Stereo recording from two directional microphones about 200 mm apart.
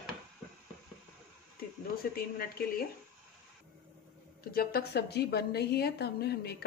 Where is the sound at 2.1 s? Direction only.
50° left (ahead or behind).